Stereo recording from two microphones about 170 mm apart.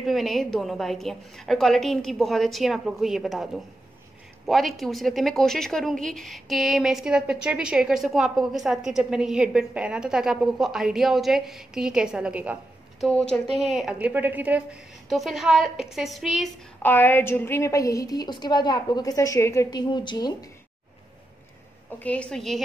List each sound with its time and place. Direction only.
0.0 s speech: centre (ahead or behind)
13.0 s speech: 5° left (ahead or behind)
16.8 s a woman's voice: 15° left (ahead or behind)
22.0 s speech: 5° left (ahead or behind)